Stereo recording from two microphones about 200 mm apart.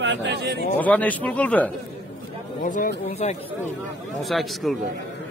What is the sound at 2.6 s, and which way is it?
Speech, 40° left (ahead or behind).